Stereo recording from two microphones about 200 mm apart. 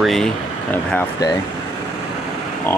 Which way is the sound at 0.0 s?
Centre (ahead or behind).